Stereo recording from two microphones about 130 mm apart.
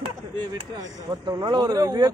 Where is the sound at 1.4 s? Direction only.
30° right (ahead or behind).